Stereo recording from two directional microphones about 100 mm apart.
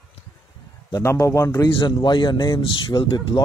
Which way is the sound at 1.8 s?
50° left (ahead or behind).